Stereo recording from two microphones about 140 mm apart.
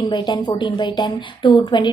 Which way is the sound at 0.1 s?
35° left (ahead or behind).